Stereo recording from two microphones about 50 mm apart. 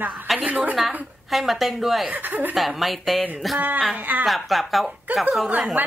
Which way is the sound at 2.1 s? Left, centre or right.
Right.